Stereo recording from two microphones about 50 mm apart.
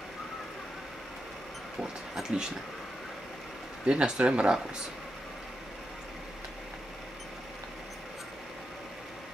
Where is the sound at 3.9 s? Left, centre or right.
Right.